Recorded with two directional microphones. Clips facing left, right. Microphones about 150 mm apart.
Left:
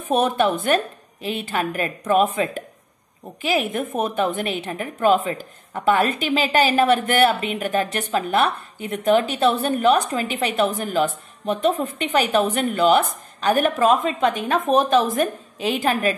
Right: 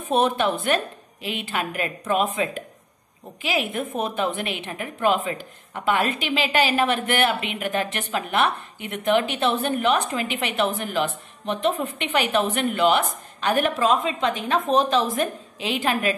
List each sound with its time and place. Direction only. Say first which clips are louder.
0.1 s a woman's voice: left 2 dB; 45° left (ahead or behind)
15.6 s a woman's voice: left 3 dB; 40° left (ahead or behind)